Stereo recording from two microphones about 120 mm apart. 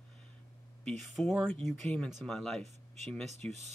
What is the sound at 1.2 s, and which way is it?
Speech, 5° left (ahead or behind).